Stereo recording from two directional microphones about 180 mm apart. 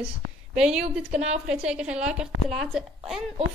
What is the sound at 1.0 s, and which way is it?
Speech, 35° right (ahead or behind).